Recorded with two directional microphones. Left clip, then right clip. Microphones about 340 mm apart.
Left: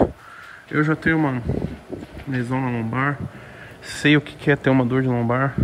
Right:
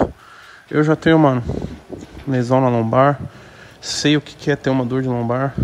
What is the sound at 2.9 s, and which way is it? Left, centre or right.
Speech, centre.